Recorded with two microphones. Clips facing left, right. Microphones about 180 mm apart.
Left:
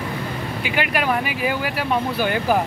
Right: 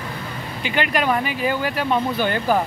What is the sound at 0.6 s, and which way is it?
Speech, 10° left (ahead or behind).